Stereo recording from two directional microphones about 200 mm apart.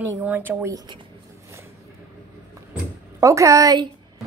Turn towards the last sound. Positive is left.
turn(degrees=-20)  # may be behind; listen again after turning